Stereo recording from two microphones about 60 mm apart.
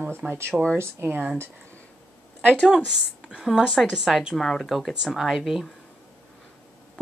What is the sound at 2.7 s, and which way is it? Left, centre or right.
Speech, centre.